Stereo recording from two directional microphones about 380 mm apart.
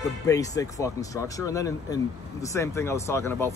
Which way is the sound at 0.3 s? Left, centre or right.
Centre.